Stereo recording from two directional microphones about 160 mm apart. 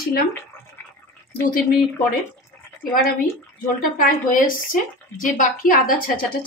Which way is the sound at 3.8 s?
60° left (ahead or behind).